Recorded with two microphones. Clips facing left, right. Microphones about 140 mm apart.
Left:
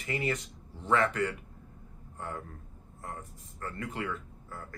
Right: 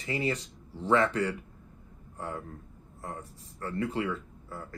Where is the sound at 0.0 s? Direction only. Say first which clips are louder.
Right 2 dB; 30° right (ahead or behind).